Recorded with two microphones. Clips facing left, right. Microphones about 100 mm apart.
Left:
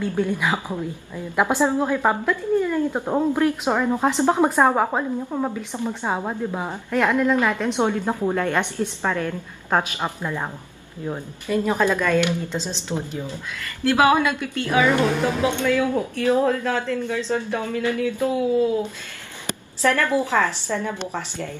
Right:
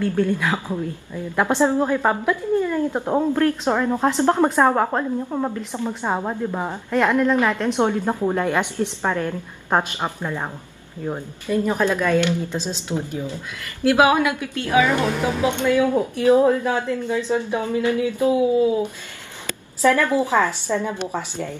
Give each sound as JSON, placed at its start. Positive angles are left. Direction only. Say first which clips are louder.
{"t": 0.0, "sound": "a woman's voice", "louder": "right 2 dB", "side_deg": 15}
{"t": 1.8, "sound": "a woman's voice", "louder": "right 1 dB", "side_deg": 0}
{"t": 3.3, "sound": "a woman's voice", "louder": "right 1 dB", "side_deg": 15}
{"t": 11.4, "sound": "a woman's voice", "louder": "right 1 dB", "side_deg": 15}
{"t": 11.9, "sound": "speech", "louder": "right 1 dB", "side_deg": -10}